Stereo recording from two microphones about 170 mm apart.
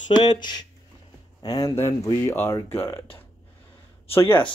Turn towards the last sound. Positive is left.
turn(degrees=15)  # may be behind; listen again after turning